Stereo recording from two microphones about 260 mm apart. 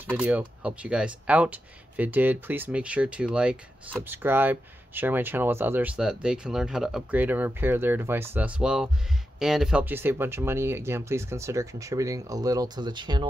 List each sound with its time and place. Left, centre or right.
0.1 s speech: centre